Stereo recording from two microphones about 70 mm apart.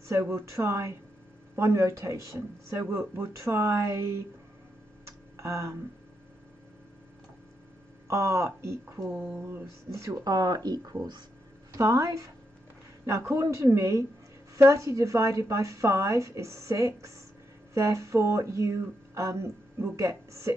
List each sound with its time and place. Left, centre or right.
0.1 s speech: right
5.0 s tick-tock: right
8.1 s speech: right
10.2 s speech: right
11.7 s speech: right